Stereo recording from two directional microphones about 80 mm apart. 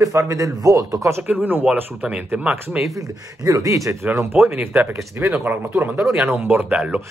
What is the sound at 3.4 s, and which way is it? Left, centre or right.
Speech, right.